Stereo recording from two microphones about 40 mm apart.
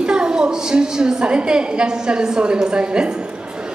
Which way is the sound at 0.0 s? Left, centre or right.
Right.